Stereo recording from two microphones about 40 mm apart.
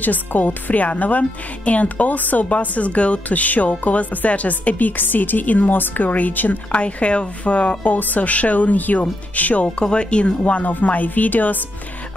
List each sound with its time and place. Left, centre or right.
0.0 s speech: left
6.7 s a woman's voice: left
9.8 s a woman's voice: left